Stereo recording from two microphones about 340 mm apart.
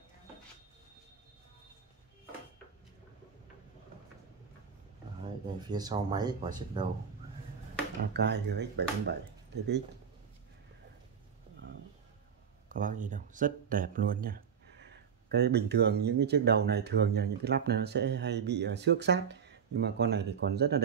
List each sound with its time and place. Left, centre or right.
5.6 s speech: centre
8.0 s speech: right
12.6 s speech: right